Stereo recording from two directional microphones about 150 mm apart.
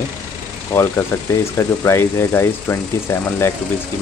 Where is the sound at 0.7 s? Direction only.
15° left (ahead or behind).